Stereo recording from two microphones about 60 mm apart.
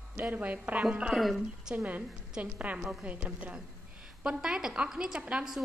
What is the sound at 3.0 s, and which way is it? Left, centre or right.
A woman's voice, right.